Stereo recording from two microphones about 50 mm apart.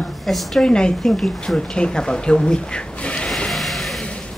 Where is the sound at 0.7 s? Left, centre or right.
Centre.